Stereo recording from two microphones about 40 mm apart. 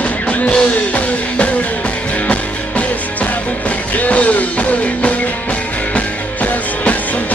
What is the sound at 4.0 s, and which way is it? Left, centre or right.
Music, left.